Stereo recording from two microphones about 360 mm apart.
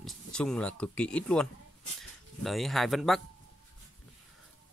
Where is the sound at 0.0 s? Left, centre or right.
Centre.